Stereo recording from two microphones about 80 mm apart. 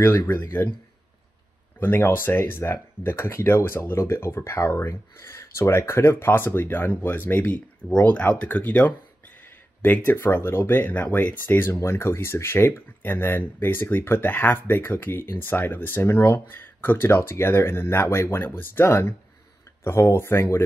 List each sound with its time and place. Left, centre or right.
0.0 s speech: left
1.8 s speech: left